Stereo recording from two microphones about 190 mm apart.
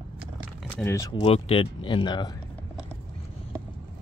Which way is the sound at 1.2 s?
30° left (ahead or behind).